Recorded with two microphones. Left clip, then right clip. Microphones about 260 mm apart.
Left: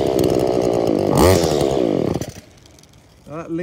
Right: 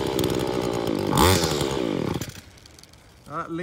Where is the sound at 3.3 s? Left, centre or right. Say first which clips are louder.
Left 4 dB; left.